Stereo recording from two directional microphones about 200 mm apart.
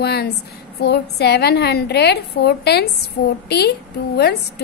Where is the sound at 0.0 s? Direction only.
55° left (ahead or behind).